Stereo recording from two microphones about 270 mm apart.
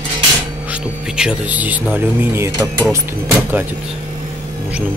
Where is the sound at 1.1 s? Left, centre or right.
Centre.